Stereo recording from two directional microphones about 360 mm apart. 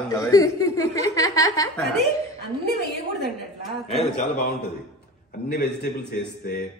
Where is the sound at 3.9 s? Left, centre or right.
Left.